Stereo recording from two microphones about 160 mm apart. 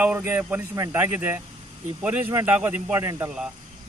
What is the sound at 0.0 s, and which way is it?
A man's voice, 10° right (ahead or behind).